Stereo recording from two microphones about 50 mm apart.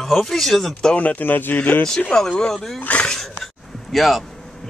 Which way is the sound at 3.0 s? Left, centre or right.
Centre.